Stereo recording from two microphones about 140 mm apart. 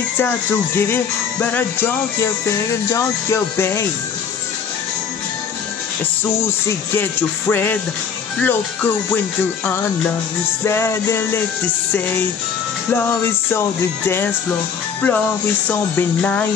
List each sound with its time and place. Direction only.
0.2 s music: 15° left (ahead or behind)
7.0 s music: 15° left (ahead or behind)
10.6 s music: 20° left (ahead or behind)
13.5 s music: 15° left (ahead or behind)
15.0 s speech: 10° left (ahead or behind)
15.7 s music: 15° left (ahead or behind)